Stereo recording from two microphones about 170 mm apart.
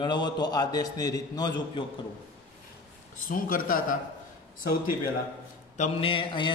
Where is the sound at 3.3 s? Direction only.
55° left (ahead or behind).